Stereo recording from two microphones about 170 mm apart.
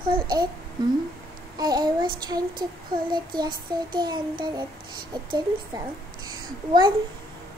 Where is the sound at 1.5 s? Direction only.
25° right (ahead or behind).